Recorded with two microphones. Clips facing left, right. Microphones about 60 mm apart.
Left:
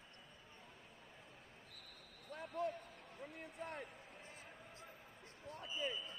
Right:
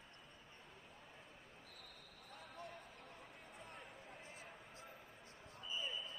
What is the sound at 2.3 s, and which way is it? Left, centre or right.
Basketball bounce, left.